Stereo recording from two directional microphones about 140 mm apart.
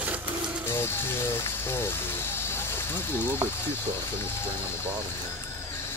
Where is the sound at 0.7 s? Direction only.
20° left (ahead or behind).